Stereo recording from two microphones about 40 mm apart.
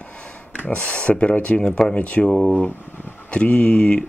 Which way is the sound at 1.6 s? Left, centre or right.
Left.